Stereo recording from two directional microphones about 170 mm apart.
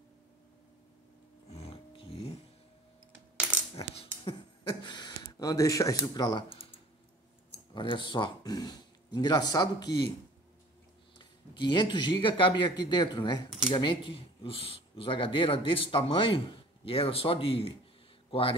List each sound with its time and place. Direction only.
1.5 s music: 35° left (ahead or behind)
3.7 s a sound: 35° left (ahead or behind)
7.7 s speech: 30° left (ahead or behind)
11.1 s speech: 25° left (ahead or behind)